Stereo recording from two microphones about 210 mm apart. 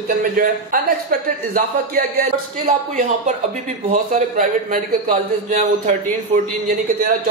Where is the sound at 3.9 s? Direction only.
40° right (ahead or behind).